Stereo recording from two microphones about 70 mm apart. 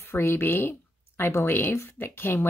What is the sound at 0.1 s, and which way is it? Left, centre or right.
Speech, left.